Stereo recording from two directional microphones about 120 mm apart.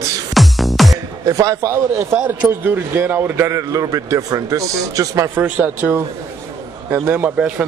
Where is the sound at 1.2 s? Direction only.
30° right (ahead or behind).